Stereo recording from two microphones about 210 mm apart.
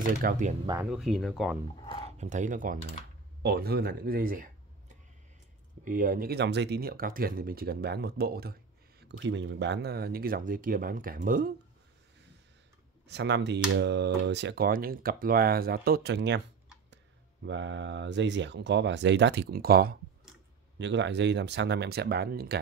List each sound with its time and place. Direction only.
0.2 s speech: 40° right (ahead or behind)
0.9 s speech: centre (ahead or behind)
2.0 s speech: 35° right (ahead or behind)
9.2 s speech: 60° right (ahead or behind); by 11.5 s 40° right (ahead or behind)
13.1 s speech: 55° right (ahead or behind)
17.5 s speech: 60° right (ahead or behind)
20.7 s speech: 60° right (ahead or behind)